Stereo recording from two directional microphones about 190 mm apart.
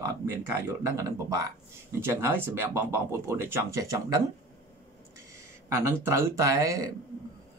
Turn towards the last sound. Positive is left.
turn(degrees=-15)  # may be behind; listen again after turning